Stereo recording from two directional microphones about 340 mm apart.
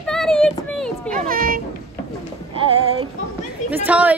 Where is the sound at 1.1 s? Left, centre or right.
Right.